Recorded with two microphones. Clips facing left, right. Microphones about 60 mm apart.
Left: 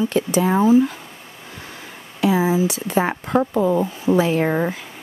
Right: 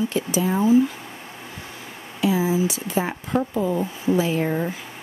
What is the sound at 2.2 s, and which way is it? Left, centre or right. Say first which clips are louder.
Speech: left 3 dB; left.